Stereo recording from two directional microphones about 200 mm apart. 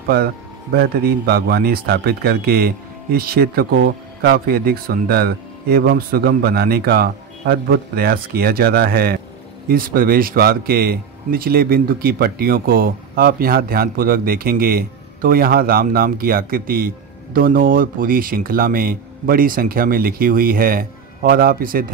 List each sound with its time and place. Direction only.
0.7 s speech: 50° right (ahead or behind)